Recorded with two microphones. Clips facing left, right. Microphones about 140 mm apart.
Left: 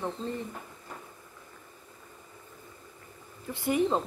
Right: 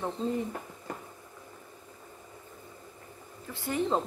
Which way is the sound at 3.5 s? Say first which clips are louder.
Left 5 dB; 15° left (ahead or behind).